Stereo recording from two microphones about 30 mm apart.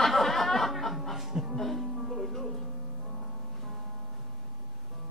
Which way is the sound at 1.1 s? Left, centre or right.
Centre.